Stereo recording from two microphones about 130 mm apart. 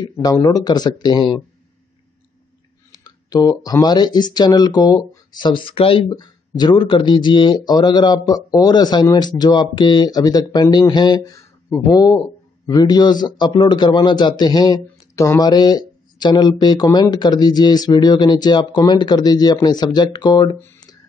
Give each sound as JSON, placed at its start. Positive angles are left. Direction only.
{"t": 0.1, "sound": "a man's voice", "side_deg": 30}
{"t": 2.9, "sound": "a man's voice", "side_deg": 30}